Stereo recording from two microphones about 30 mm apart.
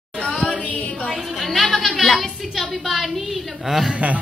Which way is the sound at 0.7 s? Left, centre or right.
Left.